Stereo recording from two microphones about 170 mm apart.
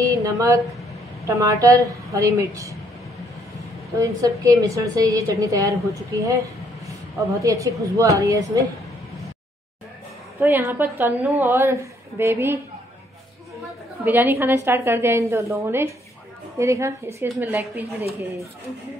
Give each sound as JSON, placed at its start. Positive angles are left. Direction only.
{"t": 0.0, "sound": "a woman's voice", "side_deg": -20}
{"t": 4.0, "sound": "a woman's voice", "side_deg": -20}
{"t": 10.4, "sound": "a woman's voice", "side_deg": -10}
{"t": 14.0, "sound": "a woman's voice", "side_deg": -10}